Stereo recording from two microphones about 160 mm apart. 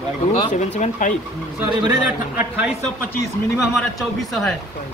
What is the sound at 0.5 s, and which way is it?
Speech, 45° left (ahead or behind).